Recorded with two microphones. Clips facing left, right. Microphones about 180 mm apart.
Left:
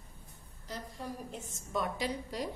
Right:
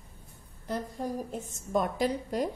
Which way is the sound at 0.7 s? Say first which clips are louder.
Right 8 dB; 45° right (ahead or behind).